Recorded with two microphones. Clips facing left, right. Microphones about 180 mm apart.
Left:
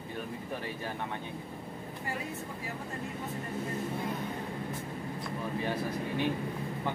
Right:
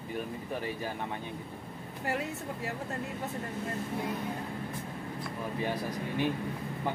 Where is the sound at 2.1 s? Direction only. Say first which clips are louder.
Right 5 dB; 75° right (ahead or behind).